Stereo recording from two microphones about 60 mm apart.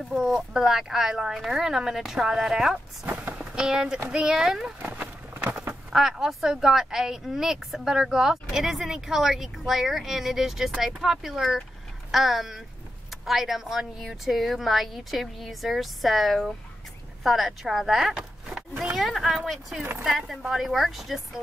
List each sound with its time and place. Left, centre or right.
0.1 s speech: centre
3.1 s vehicle: right
3.5 s speech: centre
5.4 s a sound: right
5.9 s speech: centre